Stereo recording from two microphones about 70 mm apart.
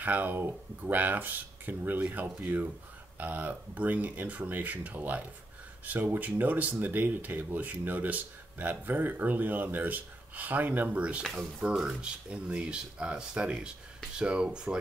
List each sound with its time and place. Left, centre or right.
0.0 s speech: right
11.7 s speech: centre